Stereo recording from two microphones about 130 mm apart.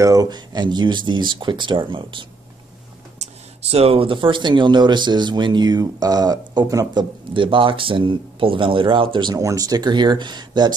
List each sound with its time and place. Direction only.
0.0 s speech: 30° right (ahead or behind)
3.2 s speech: 55° right (ahead or behind); by 10.7 s 35° right (ahead or behind)